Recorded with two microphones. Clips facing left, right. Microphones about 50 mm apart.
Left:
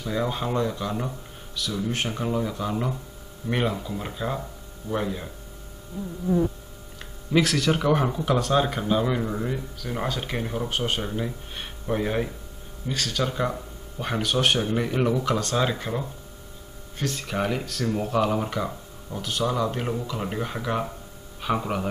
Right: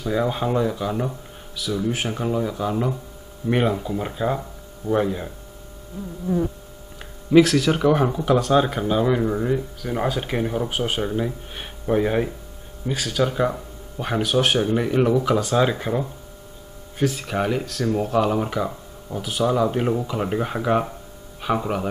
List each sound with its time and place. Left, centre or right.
0.1 s speech: centre
7.0 s speech: centre
21.4 s speech: centre